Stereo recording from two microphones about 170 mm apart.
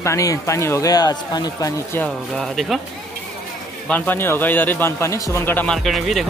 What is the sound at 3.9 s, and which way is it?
Speech, 10° left (ahead or behind).